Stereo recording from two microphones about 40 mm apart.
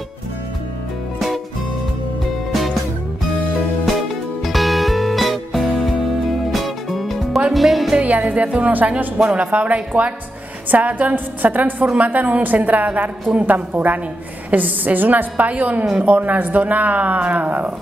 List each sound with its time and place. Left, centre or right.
2.5 s music: centre
4.5 s music: centre
8.0 s a woman's voice: right
10.7 s a woman's voice: right